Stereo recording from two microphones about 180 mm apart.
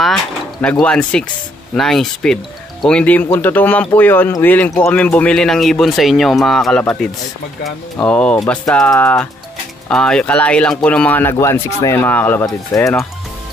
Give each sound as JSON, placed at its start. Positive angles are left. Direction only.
{"t": 0.0, "sound": "speech", "side_deg": 5}